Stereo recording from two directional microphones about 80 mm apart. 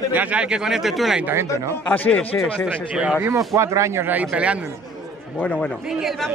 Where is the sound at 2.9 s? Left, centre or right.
Centre.